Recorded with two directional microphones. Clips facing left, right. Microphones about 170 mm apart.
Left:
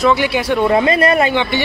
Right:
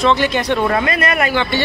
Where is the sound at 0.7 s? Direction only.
30° left (ahead or behind).